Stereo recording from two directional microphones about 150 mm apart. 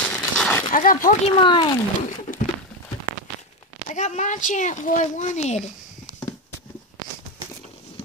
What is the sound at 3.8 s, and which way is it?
Speech, 50° left (ahead or behind).